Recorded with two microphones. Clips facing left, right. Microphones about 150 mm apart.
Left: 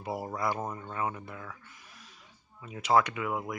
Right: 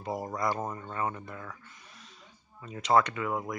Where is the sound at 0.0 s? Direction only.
5° left (ahead or behind).